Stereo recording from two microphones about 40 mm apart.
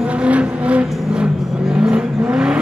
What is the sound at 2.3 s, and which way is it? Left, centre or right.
Vehicle, right.